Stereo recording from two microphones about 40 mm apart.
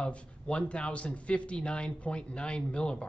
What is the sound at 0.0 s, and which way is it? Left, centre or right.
Speech, left.